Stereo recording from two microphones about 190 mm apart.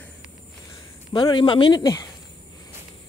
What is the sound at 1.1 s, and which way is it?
Speech, 25° left (ahead or behind).